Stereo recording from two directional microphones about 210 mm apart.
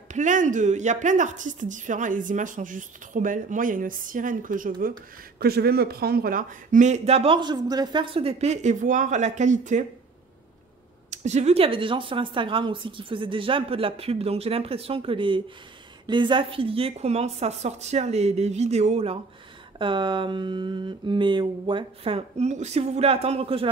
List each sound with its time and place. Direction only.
0.1 s speech: 35° right (ahead or behind)
11.1 s a woman's voice: 35° right (ahead or behind)